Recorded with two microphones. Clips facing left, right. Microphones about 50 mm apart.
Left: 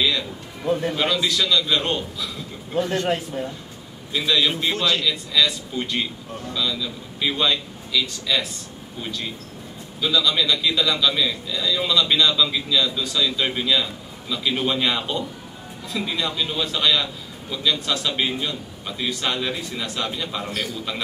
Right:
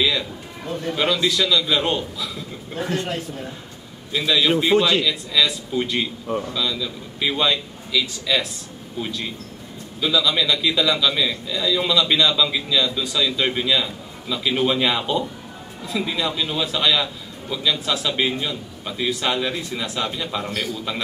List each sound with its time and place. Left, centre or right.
0.0 s music: centre
0.7 s a man's voice: centre
0.9 s a man's voice: centre
4.1 s a man's voice: centre